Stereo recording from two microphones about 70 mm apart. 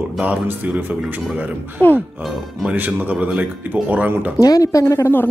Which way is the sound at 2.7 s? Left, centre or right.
Right.